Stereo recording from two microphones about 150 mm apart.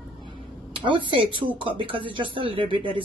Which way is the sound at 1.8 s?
35° right (ahead or behind).